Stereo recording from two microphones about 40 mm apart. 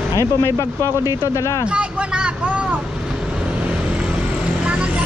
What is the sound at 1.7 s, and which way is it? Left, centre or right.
Speech, right.